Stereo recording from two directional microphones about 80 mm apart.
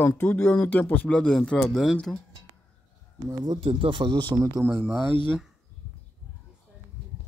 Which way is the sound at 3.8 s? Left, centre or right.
Right.